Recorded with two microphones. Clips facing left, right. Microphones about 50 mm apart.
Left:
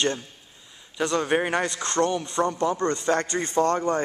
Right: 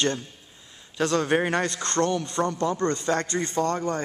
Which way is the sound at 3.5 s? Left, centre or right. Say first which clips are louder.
Left 5 dB; left.